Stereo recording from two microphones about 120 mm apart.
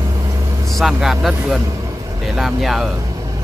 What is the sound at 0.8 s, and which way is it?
Speech, 5° right (ahead or behind).